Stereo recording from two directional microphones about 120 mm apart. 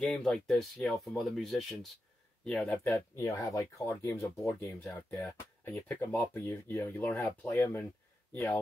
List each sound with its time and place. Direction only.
0.0 s speech: 10° left (ahead or behind)
2.9 s speech: 25° left (ahead or behind)